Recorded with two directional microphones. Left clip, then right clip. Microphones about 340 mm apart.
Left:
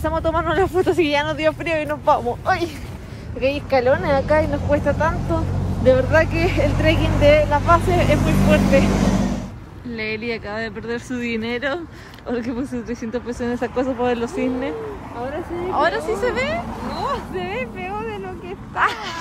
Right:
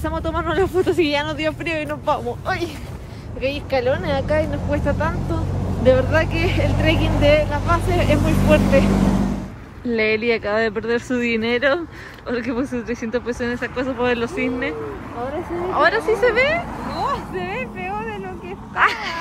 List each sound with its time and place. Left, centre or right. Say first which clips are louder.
0.0 s speech: left 3 dB; centre
4.6 s speech: left 3 dB; centre
6.8 s a woman's voice: left 1 dB; right
7.3 s speech: left 4 dB; centre
8.8 s vehicle: even; left
9.8 s speech: right 7 dB; centre
15.8 s speech: right 4 dB; centre
16.9 s a sound: right 1 dB; centre
18.8 s speech: right 2 dB; centre